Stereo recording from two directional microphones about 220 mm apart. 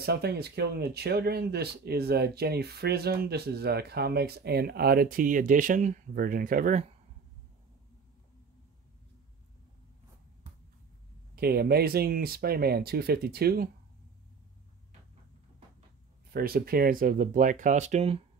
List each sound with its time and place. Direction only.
0.0 s speech: 45° right (ahead or behind)
11.3 s speech: 45° right (ahead or behind)
16.3 s speech: 40° right (ahead or behind)